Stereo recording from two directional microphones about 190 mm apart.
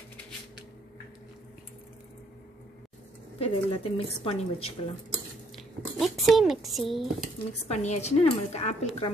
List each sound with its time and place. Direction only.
3.3 s a woman's voice: 30° left (ahead or behind)
5.6 s speech: centre (ahead or behind)
7.6 s a woman's voice: 35° left (ahead or behind)